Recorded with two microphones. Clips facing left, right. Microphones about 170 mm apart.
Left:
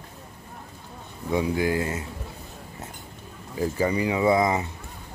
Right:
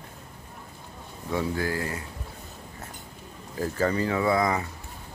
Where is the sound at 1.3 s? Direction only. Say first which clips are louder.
Left 4 dB; 15° left (ahead or behind).